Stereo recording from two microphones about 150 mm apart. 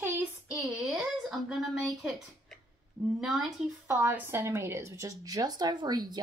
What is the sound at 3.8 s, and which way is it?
A woman's voice, 15° right (ahead or behind).